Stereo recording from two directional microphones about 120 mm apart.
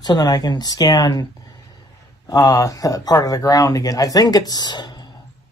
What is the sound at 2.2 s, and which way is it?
A man's voice, 30° left (ahead or behind).